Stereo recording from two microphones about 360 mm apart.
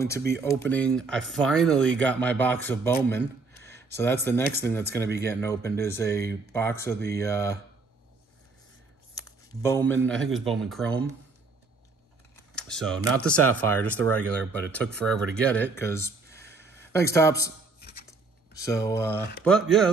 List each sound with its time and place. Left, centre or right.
0.3 s speech: centre
3.5 s a sound: right
3.9 s speech: centre
9.1 s a sound: centre
10.3 s speech: centre
12.5 s speech: centre
18.6 s speech: centre